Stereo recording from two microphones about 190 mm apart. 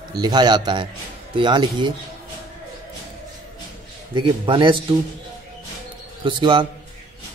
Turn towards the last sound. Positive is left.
turn(degrees=-25)  # may be behind; listen again after turning